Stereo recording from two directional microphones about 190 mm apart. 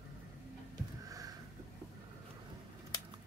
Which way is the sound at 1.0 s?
20° right (ahead or behind).